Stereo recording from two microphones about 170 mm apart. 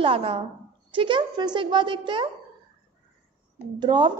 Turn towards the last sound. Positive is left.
turn(degrees=-25)  # may be behind; listen again after turning